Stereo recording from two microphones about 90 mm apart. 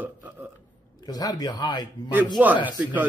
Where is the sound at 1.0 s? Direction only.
45° left (ahead or behind).